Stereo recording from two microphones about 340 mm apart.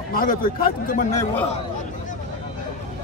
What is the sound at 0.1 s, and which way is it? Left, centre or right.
A man's voice, left.